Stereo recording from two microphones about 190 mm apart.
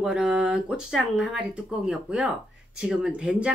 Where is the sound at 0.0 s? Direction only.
5° right (ahead or behind).